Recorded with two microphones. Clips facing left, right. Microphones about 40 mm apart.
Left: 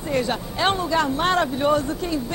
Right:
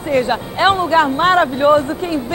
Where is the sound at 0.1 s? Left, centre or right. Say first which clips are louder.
Right 7 dB; right.